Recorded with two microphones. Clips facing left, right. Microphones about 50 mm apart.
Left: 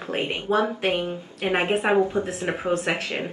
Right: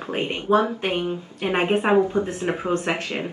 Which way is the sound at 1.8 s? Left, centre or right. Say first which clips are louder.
Right 2 dB; centre.